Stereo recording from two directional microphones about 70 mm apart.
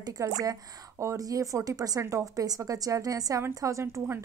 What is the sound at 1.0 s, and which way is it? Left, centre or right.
A woman's voice, right.